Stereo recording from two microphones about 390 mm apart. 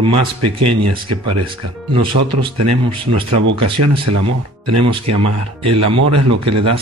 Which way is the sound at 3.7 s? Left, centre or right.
Right.